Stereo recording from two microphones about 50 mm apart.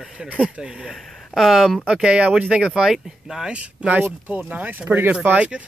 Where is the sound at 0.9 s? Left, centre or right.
Centre.